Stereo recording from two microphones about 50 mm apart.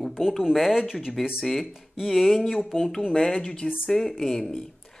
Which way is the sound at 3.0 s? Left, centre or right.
Centre.